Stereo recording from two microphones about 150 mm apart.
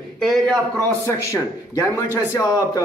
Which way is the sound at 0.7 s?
20° left (ahead or behind).